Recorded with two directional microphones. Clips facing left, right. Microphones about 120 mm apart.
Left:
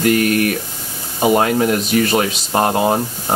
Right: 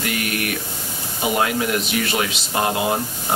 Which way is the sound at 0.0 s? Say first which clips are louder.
Left 10 dB; 40° left (ahead or behind).